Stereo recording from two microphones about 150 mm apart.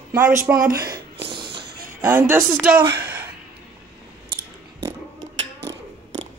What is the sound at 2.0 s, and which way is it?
Speech, 15° right (ahead or behind).